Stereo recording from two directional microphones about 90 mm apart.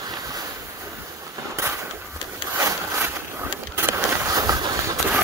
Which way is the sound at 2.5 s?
30° right (ahead or behind).